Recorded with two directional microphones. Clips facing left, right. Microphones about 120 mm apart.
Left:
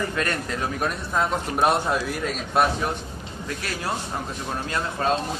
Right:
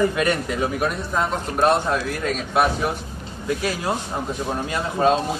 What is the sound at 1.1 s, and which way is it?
A man's voice, 5° left (ahead or behind).